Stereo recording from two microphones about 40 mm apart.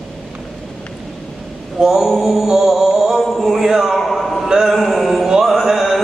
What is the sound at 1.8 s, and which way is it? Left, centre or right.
Mantra, centre.